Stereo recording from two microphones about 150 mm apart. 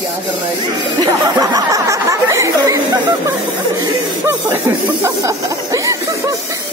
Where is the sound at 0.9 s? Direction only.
25° right (ahead or behind).